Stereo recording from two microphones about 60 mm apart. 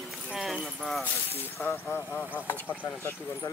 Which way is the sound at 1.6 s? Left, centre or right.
Left.